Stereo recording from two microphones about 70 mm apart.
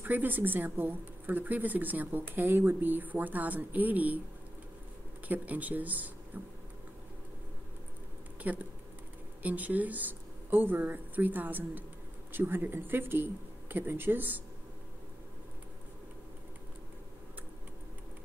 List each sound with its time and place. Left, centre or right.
0.0 s speech: right
5.3 s speech: right
8.5 s speech: right